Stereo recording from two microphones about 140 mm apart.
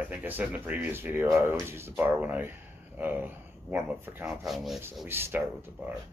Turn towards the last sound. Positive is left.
turn(degrees=-10)  # may be behind; listen again after turning